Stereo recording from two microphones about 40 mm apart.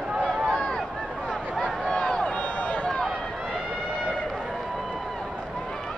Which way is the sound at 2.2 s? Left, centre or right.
Left.